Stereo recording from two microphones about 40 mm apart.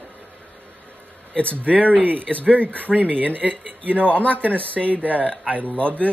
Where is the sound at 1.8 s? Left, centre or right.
Right.